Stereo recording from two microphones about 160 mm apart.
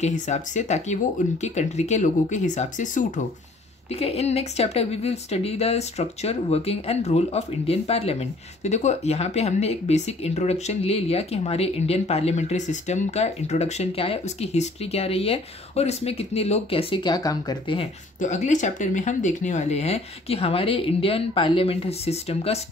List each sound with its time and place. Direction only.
0.0 s speech: 45° left (ahead or behind)
3.9 s speech: 40° left (ahead or behind)
18.2 s speech: 50° left (ahead or behind)